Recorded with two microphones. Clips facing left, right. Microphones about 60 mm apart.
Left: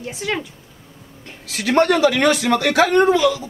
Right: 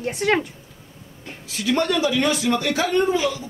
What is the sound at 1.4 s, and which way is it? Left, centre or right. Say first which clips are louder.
Speech: left 5 dB; left.